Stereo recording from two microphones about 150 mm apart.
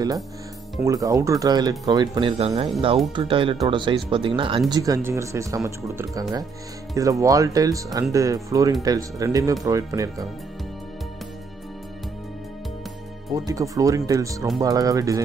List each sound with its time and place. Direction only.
0.8 s speech: 20° right (ahead or behind)
13.5 s speech: 25° right (ahead or behind)